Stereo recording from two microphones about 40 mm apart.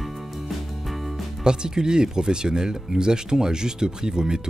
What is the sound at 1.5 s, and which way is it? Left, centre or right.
Speech, centre.